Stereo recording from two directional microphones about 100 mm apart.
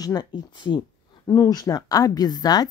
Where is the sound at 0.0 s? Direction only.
45° left (ahead or behind).